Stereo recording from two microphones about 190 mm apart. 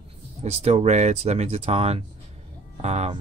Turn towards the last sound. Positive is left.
turn(degrees=-35)  # may be behind; listen again after turning